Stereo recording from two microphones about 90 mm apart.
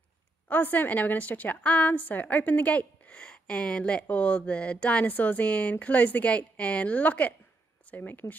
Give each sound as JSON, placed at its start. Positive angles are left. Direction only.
{"t": 0.5, "sound": "a woman's voice", "side_deg": 20}